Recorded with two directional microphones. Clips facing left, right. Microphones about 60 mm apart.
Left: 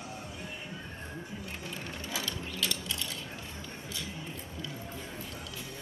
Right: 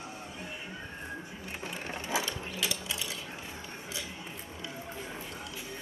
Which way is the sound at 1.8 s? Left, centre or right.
Right.